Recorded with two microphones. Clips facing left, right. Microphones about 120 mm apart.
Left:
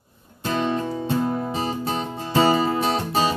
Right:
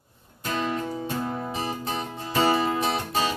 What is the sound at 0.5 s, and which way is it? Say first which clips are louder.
Music: left 4 dB; 30° left (ahead or behind).